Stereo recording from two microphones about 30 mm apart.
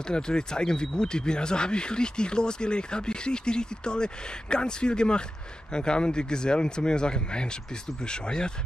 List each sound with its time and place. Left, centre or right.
0.1 s speech: left